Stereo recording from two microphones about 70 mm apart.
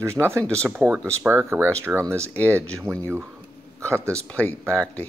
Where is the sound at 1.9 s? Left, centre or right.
Centre.